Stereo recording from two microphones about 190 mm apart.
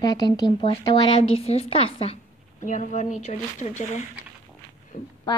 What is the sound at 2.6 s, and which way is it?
Speech, 40° left (ahead or behind).